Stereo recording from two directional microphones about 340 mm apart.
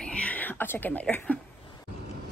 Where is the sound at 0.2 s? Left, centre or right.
Centre.